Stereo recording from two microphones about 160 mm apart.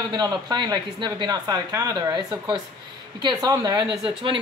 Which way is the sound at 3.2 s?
25° right (ahead or behind).